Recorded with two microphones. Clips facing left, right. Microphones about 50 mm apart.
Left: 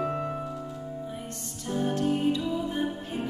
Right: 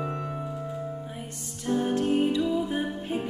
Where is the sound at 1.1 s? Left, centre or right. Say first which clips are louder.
Left 1 dB; centre.